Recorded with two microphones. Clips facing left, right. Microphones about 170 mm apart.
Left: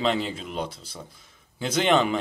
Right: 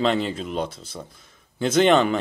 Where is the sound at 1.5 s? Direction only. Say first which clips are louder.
Right 5 dB; 10° left (ahead or behind).